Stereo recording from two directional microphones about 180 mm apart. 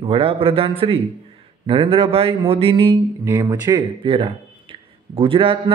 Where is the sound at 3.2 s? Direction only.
15° right (ahead or behind).